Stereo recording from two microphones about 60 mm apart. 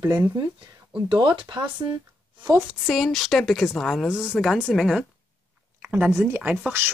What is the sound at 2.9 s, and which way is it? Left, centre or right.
Speech, centre.